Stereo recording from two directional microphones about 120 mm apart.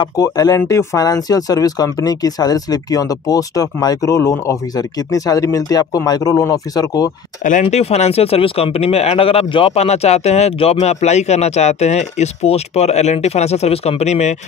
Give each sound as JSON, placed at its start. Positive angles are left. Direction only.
{"t": 0.0, "sound": "speech", "side_deg": 30}
{"t": 7.6, "sound": "speech", "side_deg": 60}